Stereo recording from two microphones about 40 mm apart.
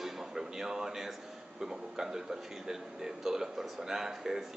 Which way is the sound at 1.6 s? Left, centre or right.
Centre.